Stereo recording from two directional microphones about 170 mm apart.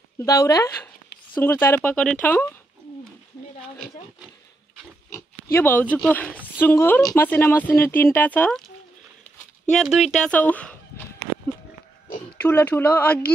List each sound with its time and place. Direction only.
0.2 s speech: 20° left (ahead or behind)
5.1 s pig: 10° left (ahead or behind)
5.9 s speech: 10° left (ahead or behind)
9.7 s speech: centre (ahead or behind)
12.4 s speech: 10° left (ahead or behind)